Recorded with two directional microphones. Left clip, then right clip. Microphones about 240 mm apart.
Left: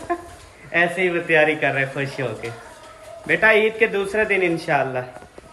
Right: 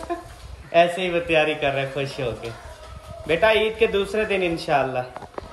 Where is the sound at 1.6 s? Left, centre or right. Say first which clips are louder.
Left 2 dB; centre.